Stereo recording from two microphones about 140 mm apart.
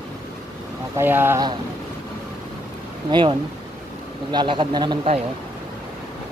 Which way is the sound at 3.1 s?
35° right (ahead or behind).